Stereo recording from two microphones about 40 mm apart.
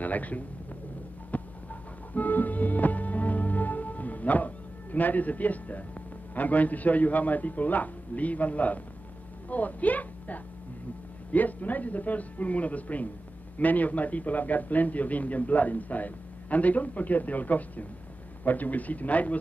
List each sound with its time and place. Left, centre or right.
0.0 s a man's voice: left
1.3 s music: left
4.9 s a man's voice: left